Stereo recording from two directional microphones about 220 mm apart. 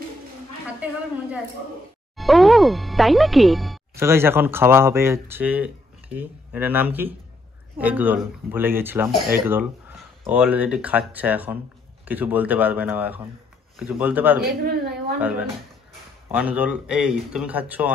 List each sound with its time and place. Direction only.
2.1 s speech: centre (ahead or behind)
3.9 s speech: 10° right (ahead or behind)
14.6 s a woman's voice: 45° right (ahead or behind)
15.1 s speech: 5° right (ahead or behind)